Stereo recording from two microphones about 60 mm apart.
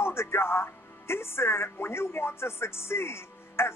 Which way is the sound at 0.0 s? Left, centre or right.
Left.